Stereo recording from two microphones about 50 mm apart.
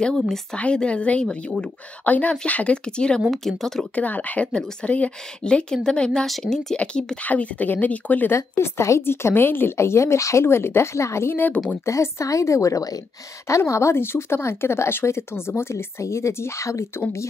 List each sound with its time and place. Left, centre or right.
0.0 s speech: centre
0.6 s a woman's voice: left
3.3 s speech: centre
3.9 s a woman's voice: left
6.2 s a woman's voice: centre
7.2 s speech: left
8.4 s speech: left
9.0 s a woman's voice: left
9.8 s speech: left
10.4 s speech: left
11.3 s speech: left
11.8 s a woman's voice: left